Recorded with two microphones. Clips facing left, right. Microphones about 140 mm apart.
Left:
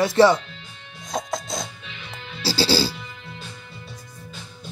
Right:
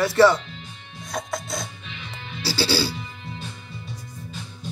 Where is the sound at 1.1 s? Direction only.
20° left (ahead or behind).